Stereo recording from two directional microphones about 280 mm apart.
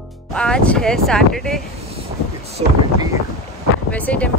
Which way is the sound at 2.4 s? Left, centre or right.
Right.